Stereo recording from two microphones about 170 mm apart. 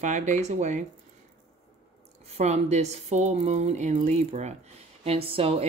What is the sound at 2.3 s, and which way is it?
Speech, 40° right (ahead or behind).